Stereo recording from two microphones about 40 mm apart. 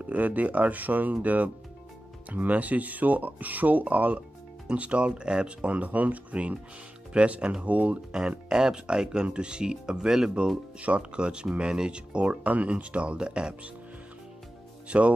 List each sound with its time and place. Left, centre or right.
0.0 s speech: right
5.7 s speech: right
8.5 s speech: centre
10.8 s speech: right
14.9 s speech: right